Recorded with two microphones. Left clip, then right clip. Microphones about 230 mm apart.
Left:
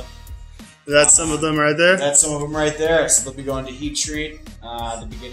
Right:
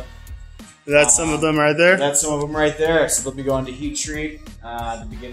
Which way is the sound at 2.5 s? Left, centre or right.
Right.